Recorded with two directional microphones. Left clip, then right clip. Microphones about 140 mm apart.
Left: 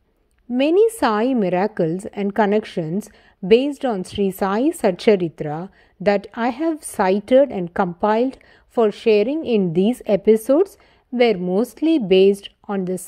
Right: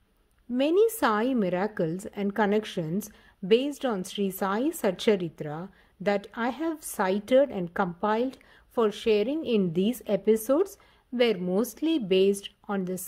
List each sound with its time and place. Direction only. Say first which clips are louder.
0.6 s a woman's voice: left 7 dB; 40° left (ahead or behind)